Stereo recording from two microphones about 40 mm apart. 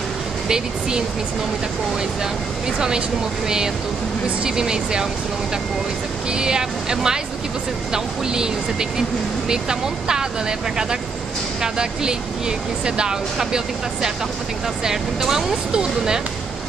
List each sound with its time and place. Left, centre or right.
0.5 s speech: centre
3.4 s speech: centre
6.3 s speech: centre
11.6 s speech: centre
14.9 s speech: centre